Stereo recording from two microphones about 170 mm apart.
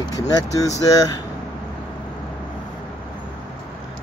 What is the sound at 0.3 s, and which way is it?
Speech, 20° left (ahead or behind).